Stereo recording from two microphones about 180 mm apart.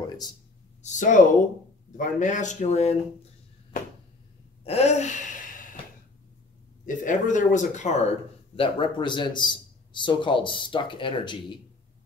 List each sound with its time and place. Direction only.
0.8 s speech: 45° left (ahead or behind)
4.6 s gasp: 35° left (ahead or behind)
6.9 s speech: 45° left (ahead or behind)
8.5 s a man's voice: 30° left (ahead or behind)